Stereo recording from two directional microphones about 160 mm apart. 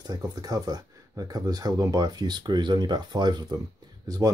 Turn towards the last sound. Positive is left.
turn(degrees=-20)  # may be behind; listen again after turning